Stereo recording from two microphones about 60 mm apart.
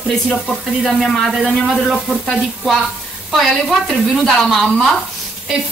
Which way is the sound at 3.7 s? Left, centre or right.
Centre.